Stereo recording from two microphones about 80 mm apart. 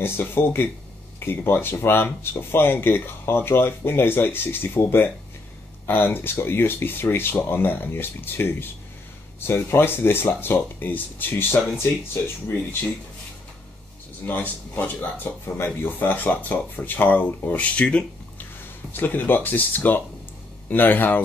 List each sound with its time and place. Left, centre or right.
0.0 s speech: left
14.2 s speech: left